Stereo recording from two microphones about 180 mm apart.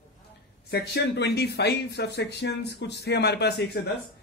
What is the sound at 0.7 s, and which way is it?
Speech, 65° left (ahead or behind).